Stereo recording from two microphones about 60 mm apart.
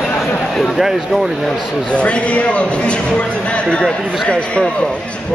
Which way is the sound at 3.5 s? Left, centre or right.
Centre.